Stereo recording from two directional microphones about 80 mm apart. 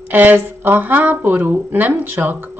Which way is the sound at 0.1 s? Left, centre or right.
Right.